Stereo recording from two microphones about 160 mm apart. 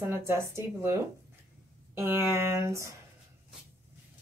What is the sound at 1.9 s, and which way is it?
Speech, 15° right (ahead or behind).